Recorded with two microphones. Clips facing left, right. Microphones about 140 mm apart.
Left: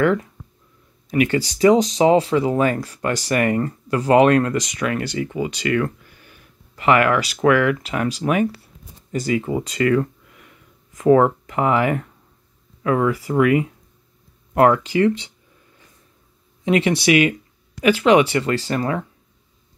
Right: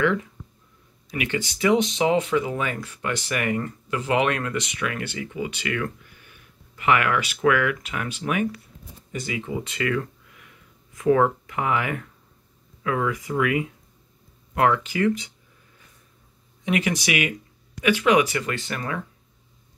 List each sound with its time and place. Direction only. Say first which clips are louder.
0.0 s speech: left 4 dB; 40° left (ahead or behind)
16.6 s speech: left 7 dB; 30° left (ahead or behind)